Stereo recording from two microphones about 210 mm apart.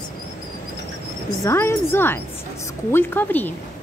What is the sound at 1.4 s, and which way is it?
A woman's voice, 10° left (ahead or behind).